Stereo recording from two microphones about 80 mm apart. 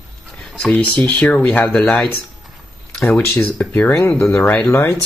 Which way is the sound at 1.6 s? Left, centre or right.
Centre.